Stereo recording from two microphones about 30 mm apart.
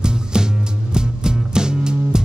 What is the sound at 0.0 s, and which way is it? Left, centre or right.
Music, right.